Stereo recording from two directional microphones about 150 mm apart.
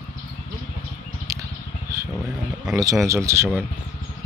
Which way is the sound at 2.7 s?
25° right (ahead or behind).